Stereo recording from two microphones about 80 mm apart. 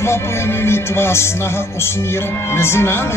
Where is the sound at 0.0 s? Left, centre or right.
Left.